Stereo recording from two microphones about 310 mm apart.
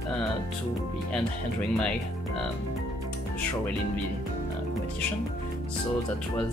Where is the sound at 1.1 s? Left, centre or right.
Centre.